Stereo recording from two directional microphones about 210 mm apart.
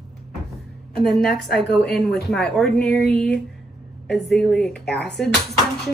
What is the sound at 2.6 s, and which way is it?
A woman's voice, centre (ahead or behind).